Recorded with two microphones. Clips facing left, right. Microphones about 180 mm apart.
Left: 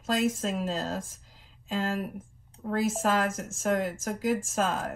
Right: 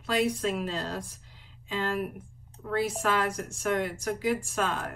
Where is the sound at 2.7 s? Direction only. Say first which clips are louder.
Left 1 dB; 45° left (ahead or behind).